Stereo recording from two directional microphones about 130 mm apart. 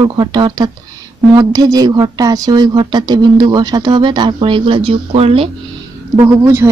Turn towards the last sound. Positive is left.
turn(degrees=-20)  # may be behind; listen again after turning